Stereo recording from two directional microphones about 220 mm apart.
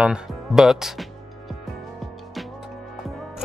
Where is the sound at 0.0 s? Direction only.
5° right (ahead or behind).